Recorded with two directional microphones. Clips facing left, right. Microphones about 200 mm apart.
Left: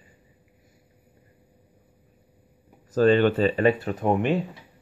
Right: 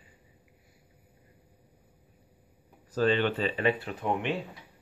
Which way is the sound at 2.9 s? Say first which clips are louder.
Left 7 dB; 45° left (ahead or behind).